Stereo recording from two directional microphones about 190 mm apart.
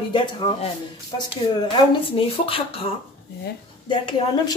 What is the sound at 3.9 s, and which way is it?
Speech, 25° left (ahead or behind).